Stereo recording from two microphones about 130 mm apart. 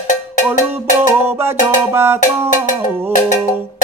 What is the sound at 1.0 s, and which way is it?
Music, 20° right (ahead or behind).